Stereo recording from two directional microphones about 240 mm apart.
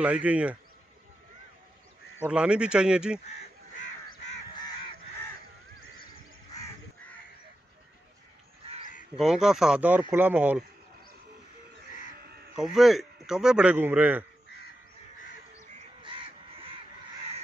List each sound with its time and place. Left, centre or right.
0.0 s speech: centre
2.2 s speech: centre
9.2 s speech: centre
12.5 s speech: centre
15.7 s crow: right